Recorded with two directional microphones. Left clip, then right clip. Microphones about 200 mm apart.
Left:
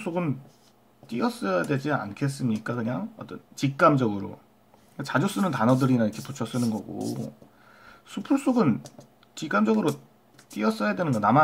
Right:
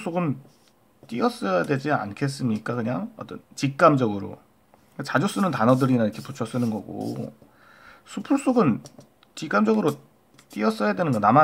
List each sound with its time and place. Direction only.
0.0 s speech: 20° right (ahead or behind)